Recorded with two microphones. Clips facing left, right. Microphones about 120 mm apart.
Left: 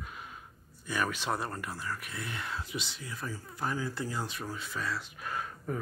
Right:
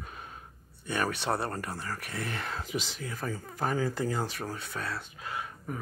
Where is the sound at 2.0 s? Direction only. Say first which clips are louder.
Right 4 dB; 70° right (ahead or behind).